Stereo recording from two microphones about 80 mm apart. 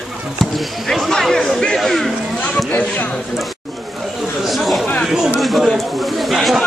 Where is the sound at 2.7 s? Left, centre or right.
Centre.